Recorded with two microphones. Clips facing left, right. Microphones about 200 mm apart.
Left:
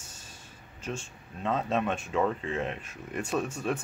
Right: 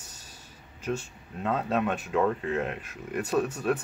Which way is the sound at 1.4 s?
10° right (ahead or behind).